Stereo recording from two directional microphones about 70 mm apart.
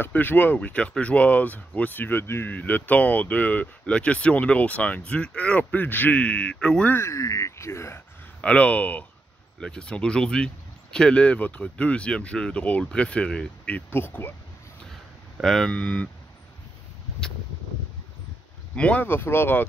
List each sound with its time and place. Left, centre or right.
0.0 s speech: left; by 6.9 s centre
7.0 s speech: left
8.4 s speech: centre
9.6 s speech: centre
13.8 s speech: left
15.4 s speech: centre
15.7 s speech: centre
18.8 s speech: centre
19.0 s speech: left